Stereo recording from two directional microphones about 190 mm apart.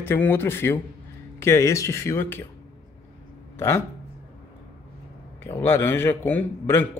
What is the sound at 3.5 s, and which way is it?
Speech, 10° left (ahead or behind).